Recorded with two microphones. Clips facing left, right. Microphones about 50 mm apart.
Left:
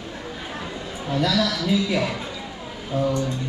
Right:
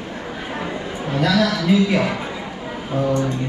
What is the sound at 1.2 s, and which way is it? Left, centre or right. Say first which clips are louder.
Speech: right 5 dB; right.